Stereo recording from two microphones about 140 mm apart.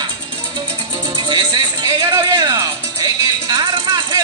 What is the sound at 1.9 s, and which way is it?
Music, 20° right (ahead or behind).